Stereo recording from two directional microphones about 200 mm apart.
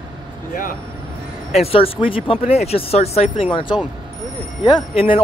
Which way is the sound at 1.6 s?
30° left (ahead or behind).